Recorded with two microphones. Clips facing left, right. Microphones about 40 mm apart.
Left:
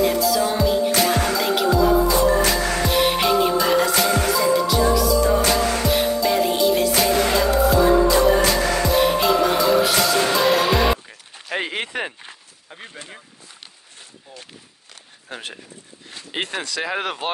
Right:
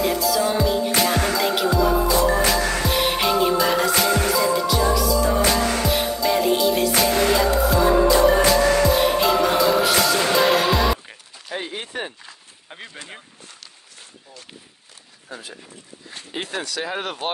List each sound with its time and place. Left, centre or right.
0.0 s music: centre
11.5 s speech: left
15.2 s speech: left
16.3 s speech: left
16.7 s speech: left